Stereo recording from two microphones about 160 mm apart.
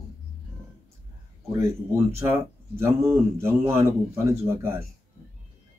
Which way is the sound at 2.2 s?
15° right (ahead or behind).